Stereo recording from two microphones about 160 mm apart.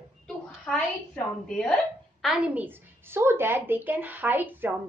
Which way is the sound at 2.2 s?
5° right (ahead or behind).